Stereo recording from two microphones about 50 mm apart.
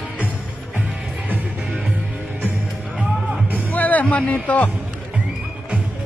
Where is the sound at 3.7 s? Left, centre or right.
Left.